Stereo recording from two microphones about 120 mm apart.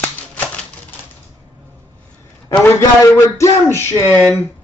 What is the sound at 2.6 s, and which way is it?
A man's voice, 25° left (ahead or behind).